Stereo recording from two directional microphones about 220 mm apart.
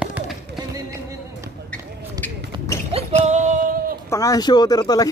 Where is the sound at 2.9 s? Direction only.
35° right (ahead or behind).